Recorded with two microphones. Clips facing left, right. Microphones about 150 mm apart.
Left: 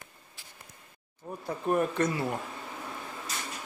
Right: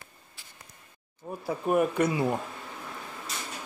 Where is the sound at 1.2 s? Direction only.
10° right (ahead or behind).